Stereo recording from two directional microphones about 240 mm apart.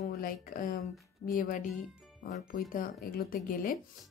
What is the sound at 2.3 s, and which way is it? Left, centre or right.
Speech, left.